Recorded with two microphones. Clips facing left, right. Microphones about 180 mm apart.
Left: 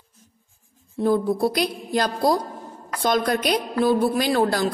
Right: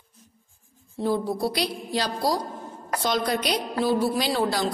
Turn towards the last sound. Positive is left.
turn(degrees=50)  # may be behind; listen again after turning